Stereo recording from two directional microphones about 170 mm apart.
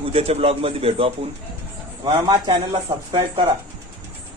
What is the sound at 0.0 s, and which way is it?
A man's voice, 35° right (ahead or behind).